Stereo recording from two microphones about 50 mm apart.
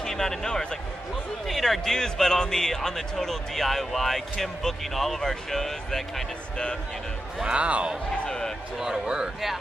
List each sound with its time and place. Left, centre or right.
0.0 s a man's voice: centre
7.4 s speech: right
8.3 s speech: centre
8.7 s speech: centre